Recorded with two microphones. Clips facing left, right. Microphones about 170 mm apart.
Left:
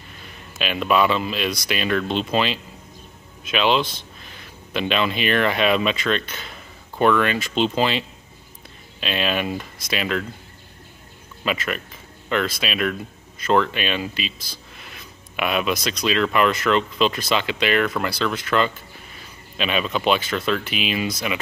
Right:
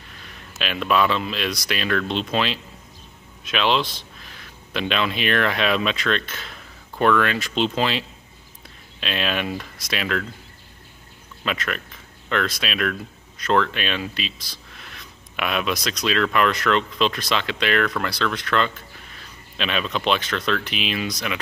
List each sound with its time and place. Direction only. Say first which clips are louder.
0.6 s speech: left 2 dB; centre (ahead or behind)
9.0 s speech: left 2 dB; centre (ahead or behind)
11.4 s speech: left 2 dB; 5° left (ahead or behind)